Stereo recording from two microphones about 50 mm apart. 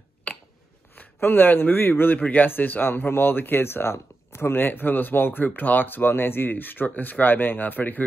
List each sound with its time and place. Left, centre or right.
0.9 s speech: left
2.1 s speech: left
2.4 s speech: left
4.6 s speech: left